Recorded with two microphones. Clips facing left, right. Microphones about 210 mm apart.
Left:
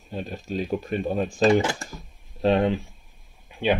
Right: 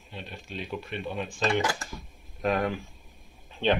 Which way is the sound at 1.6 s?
25° left (ahead or behind).